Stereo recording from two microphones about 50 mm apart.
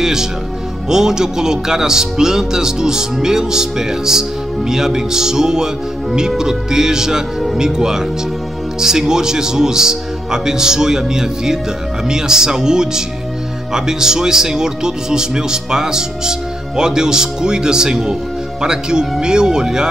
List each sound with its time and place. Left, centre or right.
0.0 s speech: centre